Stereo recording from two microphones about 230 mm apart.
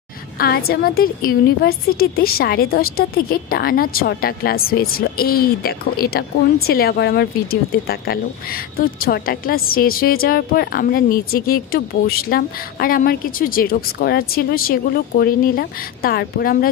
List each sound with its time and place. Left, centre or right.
0.4 s a woman's voice: left